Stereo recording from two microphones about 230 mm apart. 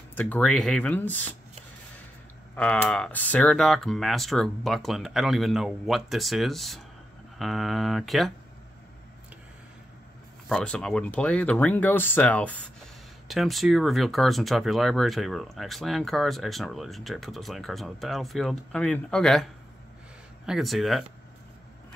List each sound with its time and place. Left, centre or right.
0.1 s speech: centre
2.5 s speech: centre
10.5 s speech: centre
20.4 s speech: centre